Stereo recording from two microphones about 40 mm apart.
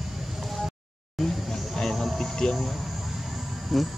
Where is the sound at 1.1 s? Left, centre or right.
Centre.